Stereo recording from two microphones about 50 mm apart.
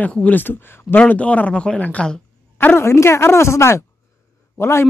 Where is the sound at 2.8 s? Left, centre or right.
Left.